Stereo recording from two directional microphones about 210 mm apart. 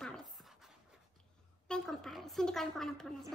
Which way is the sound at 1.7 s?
5° left (ahead or behind).